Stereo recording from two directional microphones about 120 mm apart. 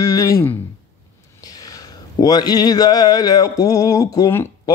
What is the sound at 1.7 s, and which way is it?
Speech, 30° left (ahead or behind).